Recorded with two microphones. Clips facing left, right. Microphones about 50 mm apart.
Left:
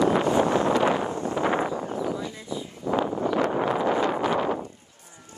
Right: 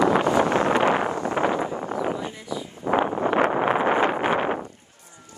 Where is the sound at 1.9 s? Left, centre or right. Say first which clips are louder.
Right 2 dB; right.